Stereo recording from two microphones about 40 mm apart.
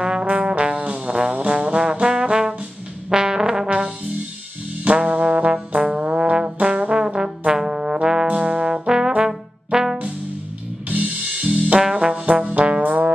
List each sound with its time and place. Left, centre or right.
0.0 s trombone: right
1.6 s trombone: right
4.8 s trombone: right
6.3 s trombone: right
8.3 s trombone: right; by 9.9 s centre
10.9 s music: right
11.9 s trombone: right
12.3 s trombone: right